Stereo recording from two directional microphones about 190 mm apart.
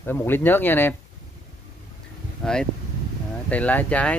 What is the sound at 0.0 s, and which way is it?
Speech, 10° left (ahead or behind).